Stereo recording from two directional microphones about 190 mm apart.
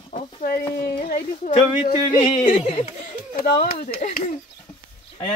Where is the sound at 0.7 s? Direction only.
55° left (ahead or behind).